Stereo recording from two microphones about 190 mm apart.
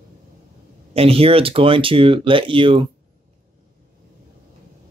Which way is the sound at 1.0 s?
30° right (ahead or behind).